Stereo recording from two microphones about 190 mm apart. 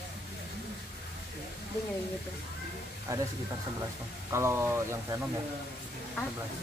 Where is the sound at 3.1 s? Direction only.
15° right (ahead or behind).